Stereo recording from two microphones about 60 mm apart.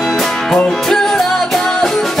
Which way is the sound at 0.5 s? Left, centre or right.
Centre.